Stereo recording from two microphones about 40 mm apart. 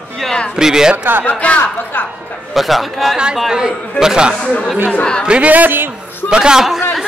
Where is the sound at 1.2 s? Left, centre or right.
Left.